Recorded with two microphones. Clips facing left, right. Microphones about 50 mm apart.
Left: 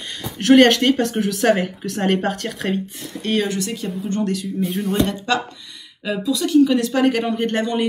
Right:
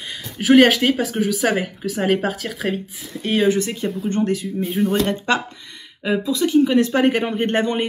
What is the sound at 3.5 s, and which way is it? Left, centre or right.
Speech, right.